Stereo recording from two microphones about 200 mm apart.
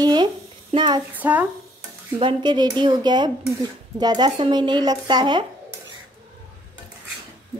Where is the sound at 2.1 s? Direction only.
25° right (ahead or behind).